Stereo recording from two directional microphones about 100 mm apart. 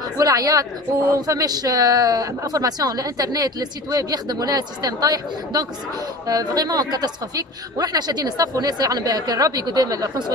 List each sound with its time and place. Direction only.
0.2 s speech: 35° right (ahead or behind)